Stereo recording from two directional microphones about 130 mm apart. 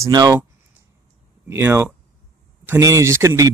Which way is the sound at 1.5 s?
20° right (ahead or behind).